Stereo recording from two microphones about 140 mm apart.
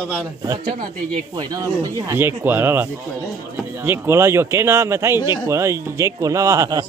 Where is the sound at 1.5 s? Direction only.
25° right (ahead or behind).